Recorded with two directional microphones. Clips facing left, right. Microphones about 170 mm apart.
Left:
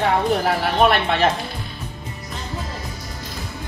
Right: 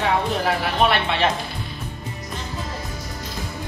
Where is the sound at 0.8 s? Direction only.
45° left (ahead or behind).